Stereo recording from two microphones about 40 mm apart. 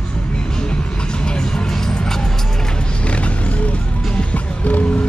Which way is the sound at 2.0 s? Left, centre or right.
Centre.